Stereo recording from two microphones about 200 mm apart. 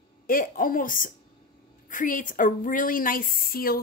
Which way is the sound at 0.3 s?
45° left (ahead or behind).